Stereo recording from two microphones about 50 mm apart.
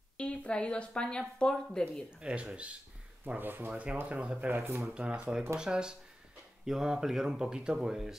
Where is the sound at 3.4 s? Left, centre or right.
Right.